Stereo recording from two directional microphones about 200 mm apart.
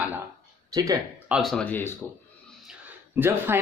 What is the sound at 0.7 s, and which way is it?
Speech, 15° right (ahead or behind).